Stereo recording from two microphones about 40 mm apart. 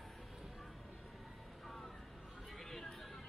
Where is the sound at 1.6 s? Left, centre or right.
Centre.